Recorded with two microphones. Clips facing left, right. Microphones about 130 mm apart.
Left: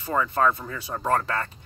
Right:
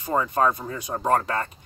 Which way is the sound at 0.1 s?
25° right (ahead or behind).